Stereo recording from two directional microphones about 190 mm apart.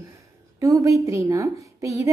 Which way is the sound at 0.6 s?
15° right (ahead or behind).